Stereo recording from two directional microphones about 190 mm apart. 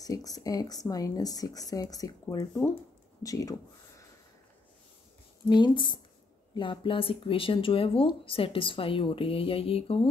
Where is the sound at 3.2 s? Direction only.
15° left (ahead or behind).